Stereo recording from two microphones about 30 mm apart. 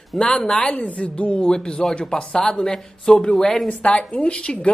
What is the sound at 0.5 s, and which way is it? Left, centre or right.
Speech, left.